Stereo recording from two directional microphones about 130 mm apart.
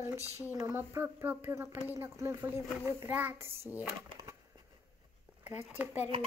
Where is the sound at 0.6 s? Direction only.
15° right (ahead or behind).